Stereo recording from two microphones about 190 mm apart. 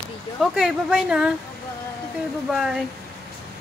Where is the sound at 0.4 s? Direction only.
5° right (ahead or behind).